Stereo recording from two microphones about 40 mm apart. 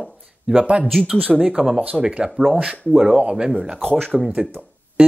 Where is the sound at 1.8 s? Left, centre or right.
Right.